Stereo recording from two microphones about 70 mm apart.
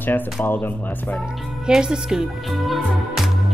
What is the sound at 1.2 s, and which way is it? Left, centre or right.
A woman's voice, centre.